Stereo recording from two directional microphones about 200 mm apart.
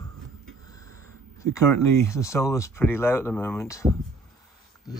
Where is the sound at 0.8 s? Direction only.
90° right.